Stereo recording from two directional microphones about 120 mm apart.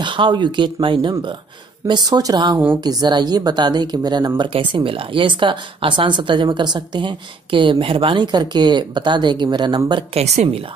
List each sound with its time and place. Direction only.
0.0 s speech: 40° right (ahead or behind)
4.4 s speech: 45° right (ahead or behind)
10.1 s a woman's voice: 65° right (ahead or behind)